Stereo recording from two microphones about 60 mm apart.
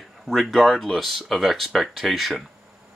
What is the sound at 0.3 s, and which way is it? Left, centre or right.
Speech, centre.